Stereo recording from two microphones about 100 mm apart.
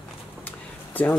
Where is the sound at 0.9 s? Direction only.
15° left (ahead or behind).